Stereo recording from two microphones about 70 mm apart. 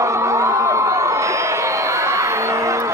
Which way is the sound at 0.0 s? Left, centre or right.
Right.